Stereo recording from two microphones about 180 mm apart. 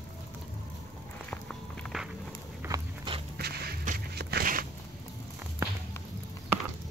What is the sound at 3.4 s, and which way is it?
Walk, 60° right (ahead or behind).